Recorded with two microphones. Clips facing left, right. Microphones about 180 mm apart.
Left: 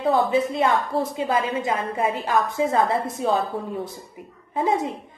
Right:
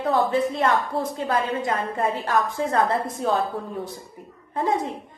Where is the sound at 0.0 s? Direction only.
Centre (ahead or behind).